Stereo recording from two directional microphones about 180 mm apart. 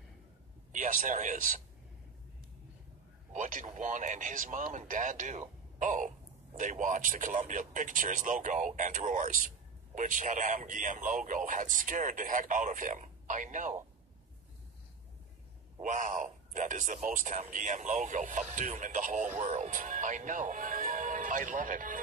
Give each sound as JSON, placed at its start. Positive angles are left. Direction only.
{"t": 0.7, "sound": "speech", "side_deg": -45}
{"t": 3.3, "sound": "a man's voice", "side_deg": -45}
{"t": 5.8, "sound": "a sound", "side_deg": -45}
{"t": 6.6, "sound": "a man's voice", "side_deg": -45}
{"t": 15.8, "sound": "a man's voice", "side_deg": -45}